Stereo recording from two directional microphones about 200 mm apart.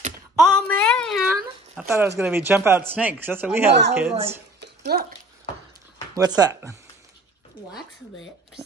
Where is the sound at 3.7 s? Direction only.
60° right (ahead or behind).